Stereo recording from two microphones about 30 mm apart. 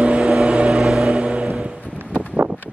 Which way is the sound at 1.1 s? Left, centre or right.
Right.